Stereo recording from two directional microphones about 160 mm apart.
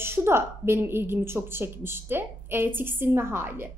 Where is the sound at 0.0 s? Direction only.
15° right (ahead or behind).